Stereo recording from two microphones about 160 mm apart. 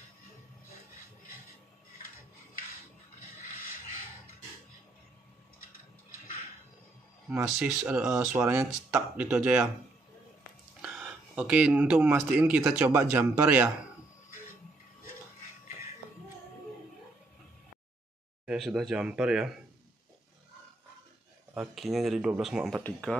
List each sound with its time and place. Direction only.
7.2 s speech: 5° right (ahead or behind)
8.4 s speech: 15° right (ahead or behind)
8.6 s speech: 5° right (ahead or behind)
10.8 s speech: 5° right (ahead or behind)
18.4 s speech: 5° right (ahead or behind)
21.5 s speech: centre (ahead or behind)